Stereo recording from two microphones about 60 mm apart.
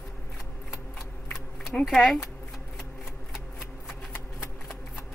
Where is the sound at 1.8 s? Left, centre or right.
Centre.